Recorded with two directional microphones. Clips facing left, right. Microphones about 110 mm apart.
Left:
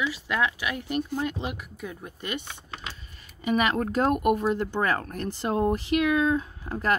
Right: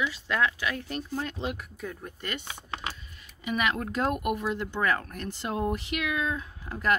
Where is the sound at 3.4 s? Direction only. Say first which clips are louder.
Left 4 dB; 40° left (ahead or behind).